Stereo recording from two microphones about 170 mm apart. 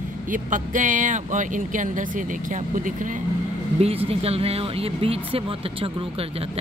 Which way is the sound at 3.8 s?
35° right (ahead or behind).